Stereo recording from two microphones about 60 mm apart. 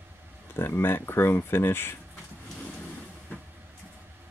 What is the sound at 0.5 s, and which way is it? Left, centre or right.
Speech, left.